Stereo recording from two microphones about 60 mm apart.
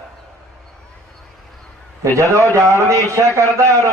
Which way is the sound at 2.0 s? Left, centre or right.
Right.